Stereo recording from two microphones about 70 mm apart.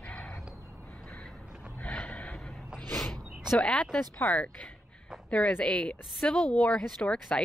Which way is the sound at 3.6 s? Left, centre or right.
Centre.